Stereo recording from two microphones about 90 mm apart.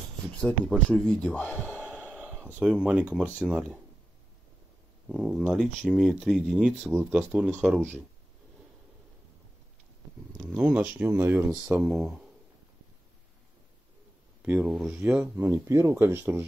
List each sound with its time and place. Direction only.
0.4 s speech: 10° left (ahead or behind)
1.8 s a sound: 15° right (ahead or behind)
2.2 s speech: 10° right (ahead or behind)
5.0 s speech: 15° right (ahead or behind)
10.3 s speech: 15° right (ahead or behind)
11.6 s speech: 15° right (ahead or behind)
14.4 s speech: 15° right (ahead or behind)
15.0 s speech: 25° right (ahead or behind)
15.5 s speech: 35° right (ahead or behind)